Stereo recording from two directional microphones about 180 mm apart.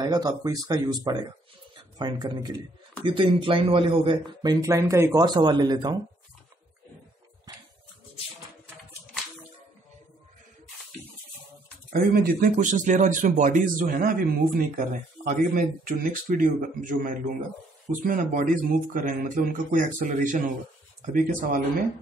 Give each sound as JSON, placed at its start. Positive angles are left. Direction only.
{"t": 0.0, "sound": "a man's voice", "side_deg": -20}
{"t": 7.5, "sound": "a sound", "side_deg": -20}
{"t": 11.9, "sound": "speech", "side_deg": -55}